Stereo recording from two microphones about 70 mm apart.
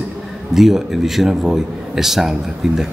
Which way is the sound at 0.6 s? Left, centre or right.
Centre.